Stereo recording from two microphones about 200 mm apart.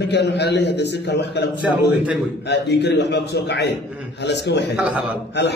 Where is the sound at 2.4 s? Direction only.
60° left (ahead or behind).